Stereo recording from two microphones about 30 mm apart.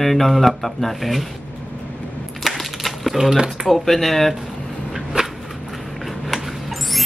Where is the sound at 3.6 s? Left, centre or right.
Centre.